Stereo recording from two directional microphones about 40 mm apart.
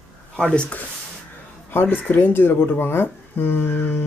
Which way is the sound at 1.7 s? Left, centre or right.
Left.